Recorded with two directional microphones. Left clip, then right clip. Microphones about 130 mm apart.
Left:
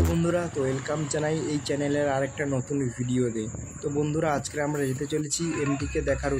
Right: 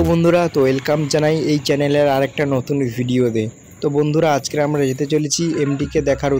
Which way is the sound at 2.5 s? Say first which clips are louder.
Right 10 dB; 55° right (ahead or behind).